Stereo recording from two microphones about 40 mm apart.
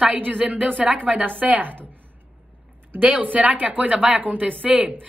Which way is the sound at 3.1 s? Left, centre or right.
Right.